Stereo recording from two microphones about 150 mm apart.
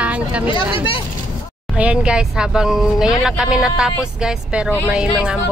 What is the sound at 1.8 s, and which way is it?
A woman's voice, 5° right (ahead or behind).